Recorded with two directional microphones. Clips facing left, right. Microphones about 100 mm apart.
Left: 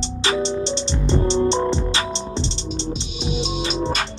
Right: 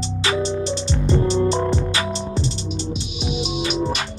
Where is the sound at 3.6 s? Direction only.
30° left (ahead or behind).